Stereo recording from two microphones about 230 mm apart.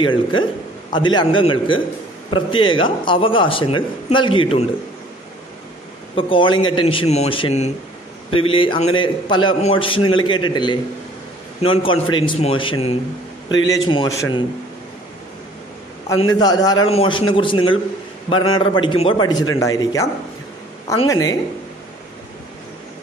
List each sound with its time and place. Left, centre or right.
0.0 s speech: left
6.1 s speech: left
16.2 s a man's voice: centre
21.1 s a man's voice: centre